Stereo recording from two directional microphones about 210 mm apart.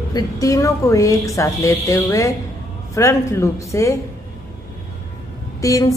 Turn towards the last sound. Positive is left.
turn(degrees=15)  # may be behind; listen again after turning